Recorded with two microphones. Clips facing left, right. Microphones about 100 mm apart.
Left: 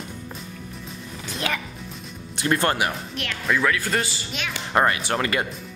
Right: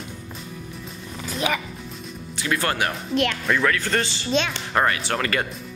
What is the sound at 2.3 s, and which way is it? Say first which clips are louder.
Music: left 3 dB; 50° left (ahead or behind).